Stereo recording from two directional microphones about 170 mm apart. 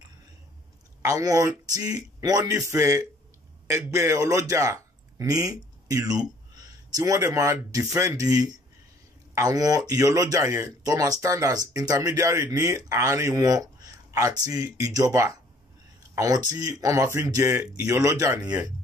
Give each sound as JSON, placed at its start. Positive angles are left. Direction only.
{"t": 1.0, "sound": "a man's voice", "side_deg": -20}